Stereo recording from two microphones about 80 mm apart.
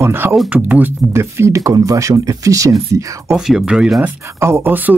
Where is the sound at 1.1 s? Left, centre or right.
Right.